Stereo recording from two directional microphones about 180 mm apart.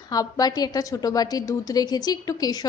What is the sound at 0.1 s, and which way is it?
A woman's voice, 20° left (ahead or behind).